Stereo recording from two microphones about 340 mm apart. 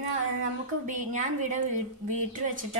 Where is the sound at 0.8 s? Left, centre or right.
Right.